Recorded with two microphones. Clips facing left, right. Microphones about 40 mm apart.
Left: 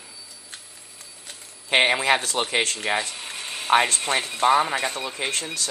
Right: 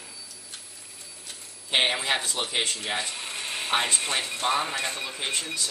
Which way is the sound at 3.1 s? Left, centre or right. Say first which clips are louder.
Even; centre.